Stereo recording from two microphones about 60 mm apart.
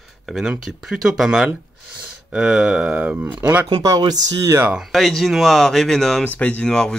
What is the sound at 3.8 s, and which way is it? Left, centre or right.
Speech, right.